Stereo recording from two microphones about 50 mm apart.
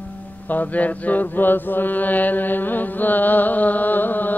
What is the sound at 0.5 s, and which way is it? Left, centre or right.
Mantra, left.